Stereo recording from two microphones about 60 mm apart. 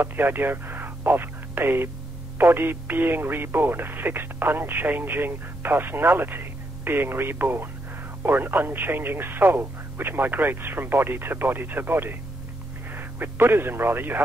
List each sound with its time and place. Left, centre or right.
0.0 s speech: right